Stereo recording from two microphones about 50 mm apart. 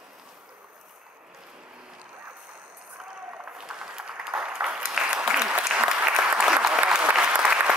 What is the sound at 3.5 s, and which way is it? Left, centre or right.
Applause, centre.